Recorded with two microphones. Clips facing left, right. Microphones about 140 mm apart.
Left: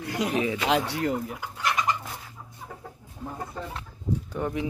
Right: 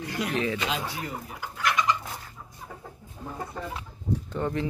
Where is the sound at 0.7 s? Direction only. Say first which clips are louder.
Left 7 dB; 70° left (ahead or behind).